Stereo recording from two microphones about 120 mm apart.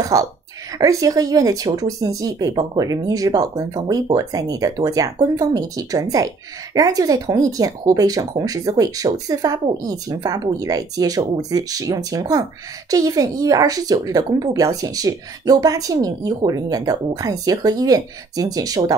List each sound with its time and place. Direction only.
0.0 s speech: 30° right (ahead or behind)